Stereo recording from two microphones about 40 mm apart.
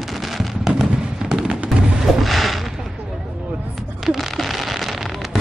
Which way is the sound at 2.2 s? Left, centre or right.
Centre.